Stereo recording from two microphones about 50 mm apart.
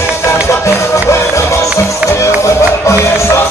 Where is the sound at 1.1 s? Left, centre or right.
Left.